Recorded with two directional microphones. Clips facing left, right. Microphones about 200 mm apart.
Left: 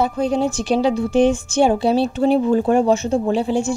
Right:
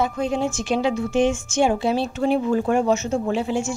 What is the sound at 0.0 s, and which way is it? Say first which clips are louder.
A woman's voice: left 4 dB; 35° left (ahead or behind).